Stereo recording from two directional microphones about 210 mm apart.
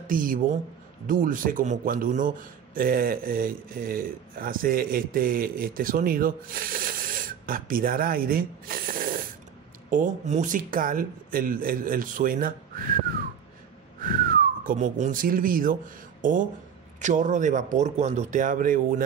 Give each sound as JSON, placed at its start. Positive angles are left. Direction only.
{"t": 0.0, "sound": "a man's voice", "side_deg": -40}
{"t": 14.0, "sound": "speech", "side_deg": -40}